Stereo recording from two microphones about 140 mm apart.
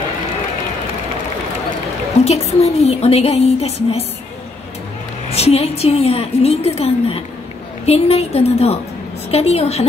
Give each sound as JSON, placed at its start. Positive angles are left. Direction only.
{"t": 2.2, "sound": "a woman's voice", "side_deg": 50}
{"t": 5.3, "sound": "a woman's voice", "side_deg": 50}